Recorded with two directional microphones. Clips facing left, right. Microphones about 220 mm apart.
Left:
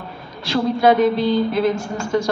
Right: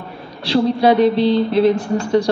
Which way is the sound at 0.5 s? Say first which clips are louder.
Right 2 dB; 35° right (ahead or behind).